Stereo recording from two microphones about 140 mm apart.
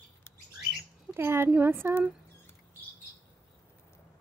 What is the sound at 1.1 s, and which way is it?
Speech, 15° right (ahead or behind).